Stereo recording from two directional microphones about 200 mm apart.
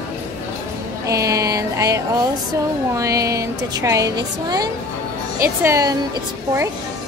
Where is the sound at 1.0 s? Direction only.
15° right (ahead or behind).